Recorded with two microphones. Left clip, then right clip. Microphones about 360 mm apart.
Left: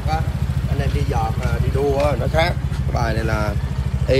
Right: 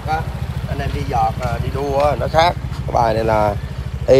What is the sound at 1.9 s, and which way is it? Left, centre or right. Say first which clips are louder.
Speech: right 8 dB; centre.